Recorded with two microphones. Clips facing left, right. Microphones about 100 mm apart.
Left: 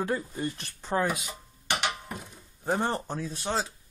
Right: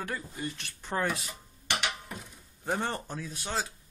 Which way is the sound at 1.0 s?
5° left (ahead or behind).